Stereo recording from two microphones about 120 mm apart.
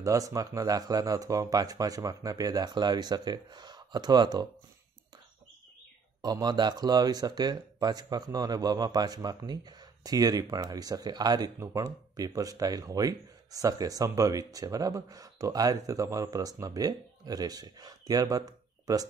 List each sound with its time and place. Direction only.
0.0 s speech: 30° right (ahead or behind)
6.2 s speech: 35° right (ahead or behind)